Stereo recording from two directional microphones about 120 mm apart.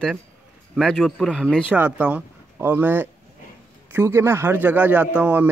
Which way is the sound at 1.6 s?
15° right (ahead or behind).